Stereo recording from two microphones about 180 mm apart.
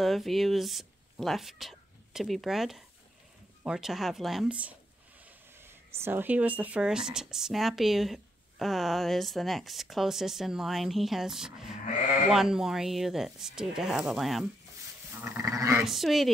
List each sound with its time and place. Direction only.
0.0 s speech: centre (ahead or behind)
15.0 s goat: 15° right (ahead or behind)
15.8 s speech: centre (ahead or behind)